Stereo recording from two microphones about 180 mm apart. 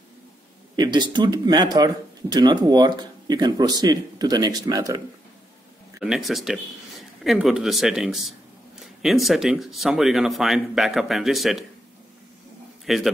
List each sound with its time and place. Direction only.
0.7 s speech: 25° right (ahead or behind)
5.9 s speech: centre (ahead or behind)
12.8 s a man's voice: centre (ahead or behind)